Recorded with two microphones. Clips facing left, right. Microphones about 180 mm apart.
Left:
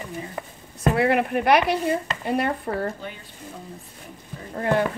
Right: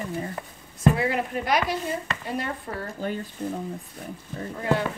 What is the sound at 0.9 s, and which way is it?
Speech, 65° left (ahead or behind).